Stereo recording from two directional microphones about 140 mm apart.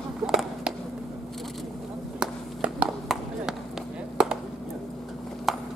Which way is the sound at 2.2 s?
5° right (ahead or behind).